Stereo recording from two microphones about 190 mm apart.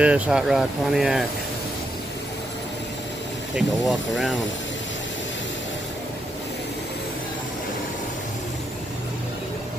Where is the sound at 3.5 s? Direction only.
Centre (ahead or behind).